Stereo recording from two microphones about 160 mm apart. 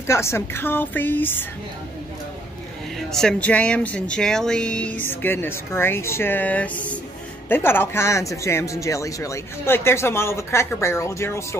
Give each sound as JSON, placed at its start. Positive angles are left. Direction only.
{"t": 0.0, "sound": "speech", "side_deg": 15}
{"t": 3.1, "sound": "speech", "side_deg": 5}